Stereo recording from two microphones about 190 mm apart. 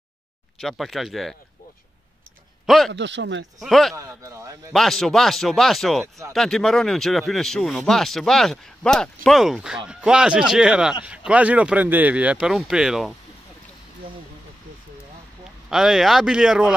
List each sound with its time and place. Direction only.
0.6 s speech: centre (ahead or behind)
2.6 s a man's voice: centre (ahead or behind)
2.9 s speech: 70° right (ahead or behind)
3.6 s speech: centre (ahead or behind)
3.9 s speech: 15° right (ahead or behind)
4.7 s speech: centre (ahead or behind)
15.7 s speech: centre (ahead or behind)